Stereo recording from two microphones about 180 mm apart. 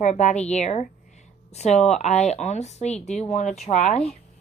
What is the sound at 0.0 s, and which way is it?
A woman's voice, 40° left (ahead or behind).